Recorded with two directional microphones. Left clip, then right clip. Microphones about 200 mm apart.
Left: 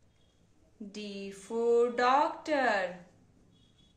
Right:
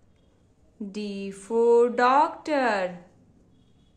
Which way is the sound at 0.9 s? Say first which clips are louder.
Right 7 dB; 30° right (ahead or behind).